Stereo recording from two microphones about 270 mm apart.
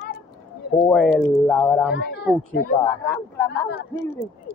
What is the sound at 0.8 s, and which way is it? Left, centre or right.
Speech, centre.